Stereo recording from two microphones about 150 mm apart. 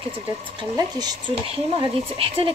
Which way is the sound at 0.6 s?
25° right (ahead or behind).